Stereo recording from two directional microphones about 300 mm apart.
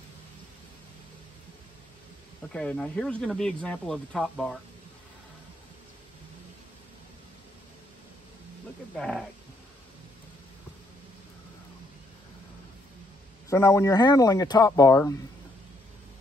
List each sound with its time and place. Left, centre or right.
2.5 s speech: centre
8.9 s speech: centre
13.5 s a man's voice: centre